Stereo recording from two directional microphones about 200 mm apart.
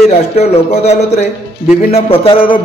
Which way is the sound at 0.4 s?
35° left (ahead or behind).